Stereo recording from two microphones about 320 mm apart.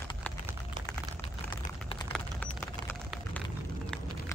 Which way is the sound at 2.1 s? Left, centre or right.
Centre.